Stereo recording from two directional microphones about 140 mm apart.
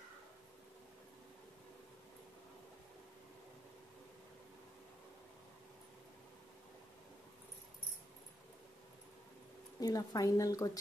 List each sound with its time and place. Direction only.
9.8 s a woman's voice: 25° left (ahead or behind)